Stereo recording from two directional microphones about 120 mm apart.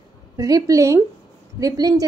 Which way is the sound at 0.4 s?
30° right (ahead or behind).